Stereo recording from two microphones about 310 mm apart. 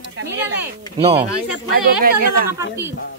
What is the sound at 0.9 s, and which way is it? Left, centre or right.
Speech, centre.